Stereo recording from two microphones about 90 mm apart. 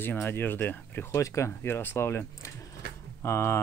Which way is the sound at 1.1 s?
35° left (ahead or behind).